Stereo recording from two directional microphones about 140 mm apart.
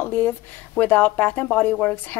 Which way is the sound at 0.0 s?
15° left (ahead or behind).